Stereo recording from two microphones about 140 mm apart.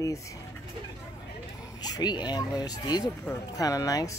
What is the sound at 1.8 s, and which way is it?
Speech, 30° left (ahead or behind).